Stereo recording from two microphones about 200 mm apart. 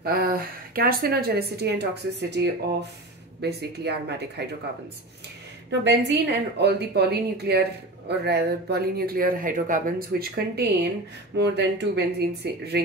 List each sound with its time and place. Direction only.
0.0 s speech: 50° right (ahead or behind)
5.7 s speech: 60° right (ahead or behind)